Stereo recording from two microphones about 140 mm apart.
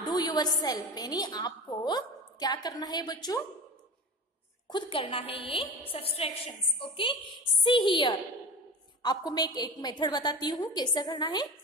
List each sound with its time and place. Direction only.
0.1 s a woman's voice: 30° left (ahead or behind)
4.6 s a woman's voice: 35° left (ahead or behind)